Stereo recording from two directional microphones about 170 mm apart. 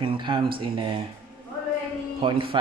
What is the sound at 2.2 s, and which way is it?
Speech, 30° right (ahead or behind).